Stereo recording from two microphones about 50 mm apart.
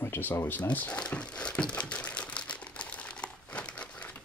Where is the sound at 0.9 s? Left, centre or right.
Left.